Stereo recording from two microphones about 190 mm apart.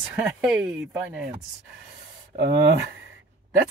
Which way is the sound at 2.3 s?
65° right (ahead or behind).